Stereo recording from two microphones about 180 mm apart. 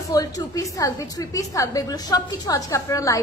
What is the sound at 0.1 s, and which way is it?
A woman's voice, 20° left (ahead or behind).